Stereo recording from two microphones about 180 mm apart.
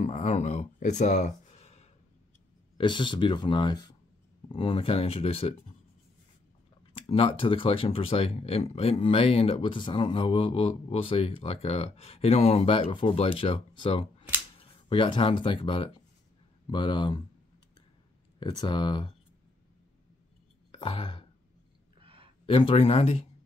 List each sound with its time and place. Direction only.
0.0 s speech: 40° left (ahead or behind)
2.8 s speech: 25° left (ahead or behind)
6.9 s speech: 30° left (ahead or behind)
18.4 s speech: 25° left (ahead or behind)
20.7 s speech: 30° left (ahead or behind)
22.0 s a sound: 30° right (ahead or behind)
22.5 s speech: 30° left (ahead or behind)